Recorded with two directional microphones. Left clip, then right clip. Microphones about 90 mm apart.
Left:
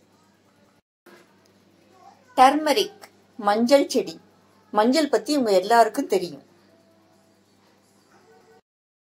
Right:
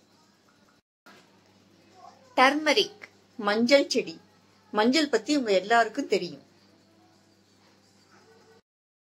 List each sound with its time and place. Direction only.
2.3 s a woman's voice: 20° left (ahead or behind)